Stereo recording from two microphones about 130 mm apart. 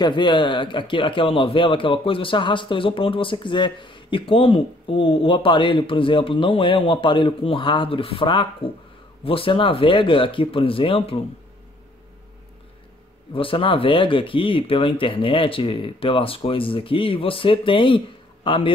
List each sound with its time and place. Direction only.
0.0 s a man's voice: 35° left (ahead or behind)
13.3 s speech: 45° left (ahead or behind)